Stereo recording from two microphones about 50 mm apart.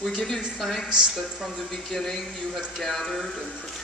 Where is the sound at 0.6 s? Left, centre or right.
Centre.